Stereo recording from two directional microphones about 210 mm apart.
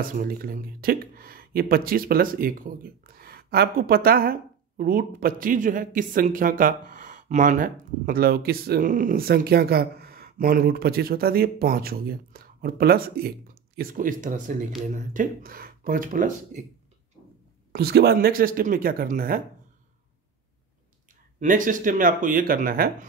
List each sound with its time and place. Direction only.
0.0 s speech: 40° right (ahead or behind)
17.7 s speech: 50° right (ahead or behind)
21.4 s speech: 40° right (ahead or behind)